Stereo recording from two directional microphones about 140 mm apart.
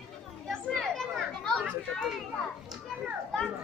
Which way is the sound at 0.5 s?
Centre (ahead or behind).